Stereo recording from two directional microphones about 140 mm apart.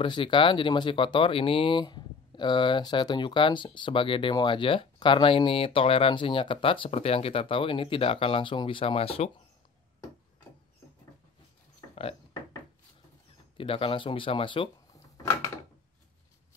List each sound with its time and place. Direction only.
0.0 s speech: 35° left (ahead or behind)
11.9 s a sound: 45° left (ahead or behind)
13.6 s speech: 40° left (ahead or behind)